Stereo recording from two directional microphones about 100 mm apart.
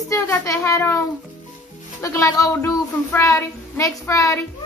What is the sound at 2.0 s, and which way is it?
Child singing, 30° left (ahead or behind).